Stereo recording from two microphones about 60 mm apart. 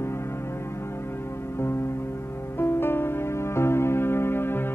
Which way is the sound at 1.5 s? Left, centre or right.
Left.